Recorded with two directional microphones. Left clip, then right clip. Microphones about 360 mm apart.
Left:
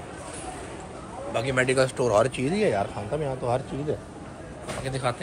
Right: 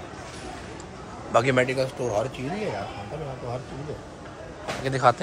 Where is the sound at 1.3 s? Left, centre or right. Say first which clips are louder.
Right 5 dB; centre.